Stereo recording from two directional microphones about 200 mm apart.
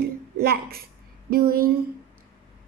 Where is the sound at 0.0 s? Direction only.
50° right (ahead or behind).